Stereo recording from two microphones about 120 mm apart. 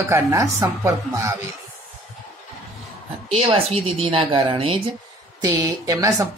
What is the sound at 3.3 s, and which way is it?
A woman's voice, 55° right (ahead or behind).